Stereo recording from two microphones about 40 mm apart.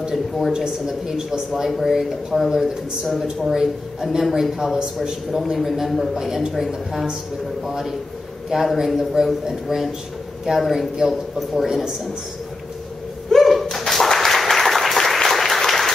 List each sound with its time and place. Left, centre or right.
0.0 s speech: centre
1.5 s speech: centre
13.3 s a sound: centre
13.7 s applause: centre